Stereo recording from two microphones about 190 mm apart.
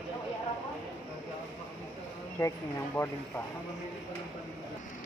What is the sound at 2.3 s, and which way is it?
Speech, 15° left (ahead or behind).